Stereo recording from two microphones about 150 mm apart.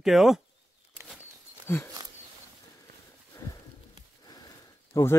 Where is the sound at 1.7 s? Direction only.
15° left (ahead or behind).